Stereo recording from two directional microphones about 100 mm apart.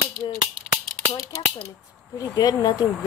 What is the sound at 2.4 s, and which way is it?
Speech, 40° left (ahead or behind).